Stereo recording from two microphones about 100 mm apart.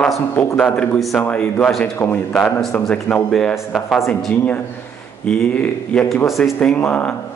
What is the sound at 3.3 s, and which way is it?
Speech, centre (ahead or behind).